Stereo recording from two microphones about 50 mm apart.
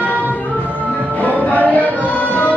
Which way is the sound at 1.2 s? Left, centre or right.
Left.